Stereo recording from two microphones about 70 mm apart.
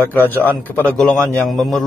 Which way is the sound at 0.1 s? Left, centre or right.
Left.